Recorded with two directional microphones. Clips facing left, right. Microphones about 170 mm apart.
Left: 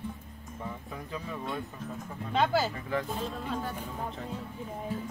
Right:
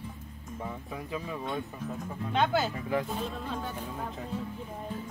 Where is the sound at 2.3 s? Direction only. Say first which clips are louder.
Even; centre (ahead or behind).